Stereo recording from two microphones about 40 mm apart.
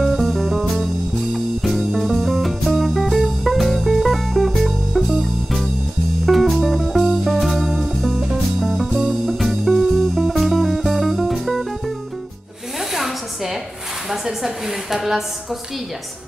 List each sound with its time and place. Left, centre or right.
0.0 s music: centre
12.9 s a sound: centre
14.1 s a woman's voice: centre